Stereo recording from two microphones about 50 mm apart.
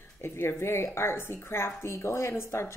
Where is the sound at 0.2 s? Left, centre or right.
Left.